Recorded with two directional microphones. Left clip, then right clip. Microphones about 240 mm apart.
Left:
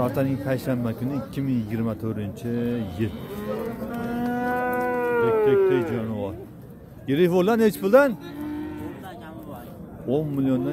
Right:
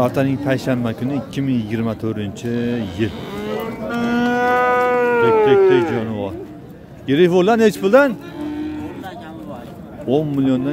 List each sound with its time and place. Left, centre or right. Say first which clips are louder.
0.0 s speech: right 7 dB; centre
3.9 s livestock: right 12 dB; right
7.1 s speech: right 7 dB; centre
10.0 s speech: right 7 dB; centre